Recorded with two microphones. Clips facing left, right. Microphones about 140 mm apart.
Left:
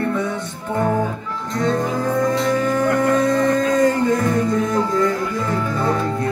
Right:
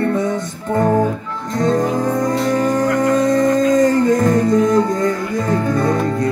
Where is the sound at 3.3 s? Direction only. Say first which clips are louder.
Right 3 dB; 40° right (ahead or behind).